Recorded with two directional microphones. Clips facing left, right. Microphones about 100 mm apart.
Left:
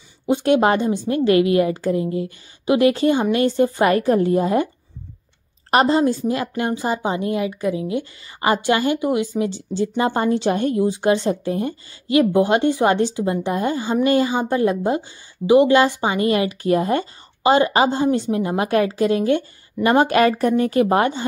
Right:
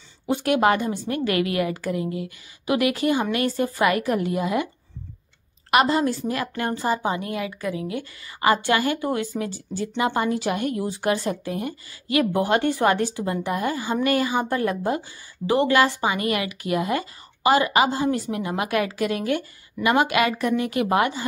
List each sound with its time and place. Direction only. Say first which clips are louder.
0.3 s a woman's voice: left 4 dB; 25° left (ahead or behind)
5.7 s a woman's voice: left 3 dB; 30° left (ahead or behind)
9.9 s a woman's voice: left 3 dB; 35° left (ahead or behind)